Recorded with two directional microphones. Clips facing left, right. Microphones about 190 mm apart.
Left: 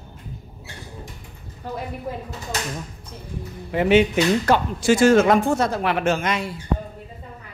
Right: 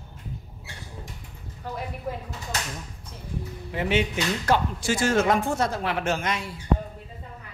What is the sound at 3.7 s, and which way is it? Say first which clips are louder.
Speech: left 8 dB; 65° left (ahead or behind).